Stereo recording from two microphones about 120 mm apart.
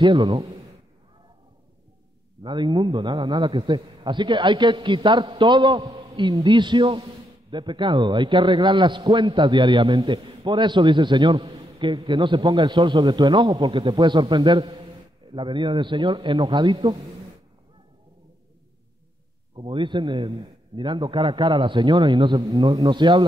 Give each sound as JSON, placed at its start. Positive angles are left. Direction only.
{"t": 0.0, "sound": "a man's voice", "side_deg": -30}
{"t": 2.4, "sound": "a man's voice", "side_deg": -40}
{"t": 7.5, "sound": "a man's voice", "side_deg": -40}
{"t": 19.5, "sound": "a man's voice", "side_deg": -45}